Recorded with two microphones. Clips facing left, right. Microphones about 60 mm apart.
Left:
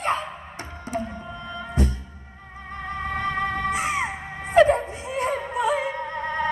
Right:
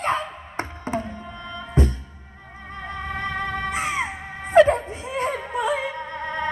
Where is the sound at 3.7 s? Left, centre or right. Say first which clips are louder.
Left 1 dB; right.